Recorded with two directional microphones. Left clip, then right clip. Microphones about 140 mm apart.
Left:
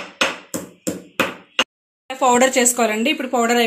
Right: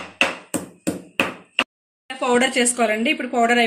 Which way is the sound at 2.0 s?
35° left (ahead or behind).